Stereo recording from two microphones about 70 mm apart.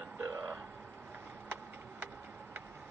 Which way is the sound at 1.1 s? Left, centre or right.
Right.